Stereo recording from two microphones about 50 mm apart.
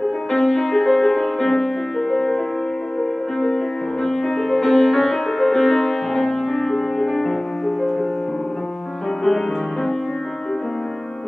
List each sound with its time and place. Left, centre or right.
0.3 s music: centre